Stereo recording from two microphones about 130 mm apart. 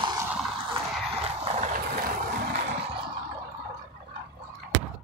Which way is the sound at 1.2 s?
50° right (ahead or behind).